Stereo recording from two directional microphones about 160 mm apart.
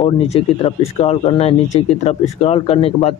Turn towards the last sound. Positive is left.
turn(degrees=40)  # may be behind; listen again after turning